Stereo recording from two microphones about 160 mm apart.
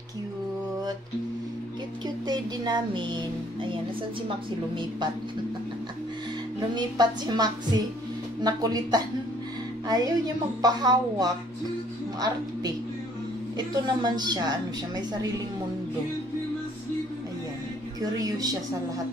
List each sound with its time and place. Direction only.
2.2 s speech: 25° right (ahead or behind)
6.7 s a woman's voice: 25° right (ahead or behind)
13.6 s a woman's voice: 25° right (ahead or behind)
18.0 s a woman's voice: 25° right (ahead or behind)